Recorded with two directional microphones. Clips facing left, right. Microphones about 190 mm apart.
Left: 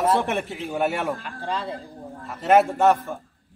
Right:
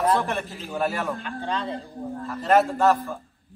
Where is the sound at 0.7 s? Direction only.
15° left (ahead or behind).